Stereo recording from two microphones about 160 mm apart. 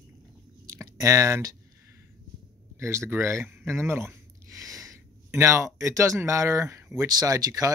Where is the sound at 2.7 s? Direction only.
15° right (ahead or behind).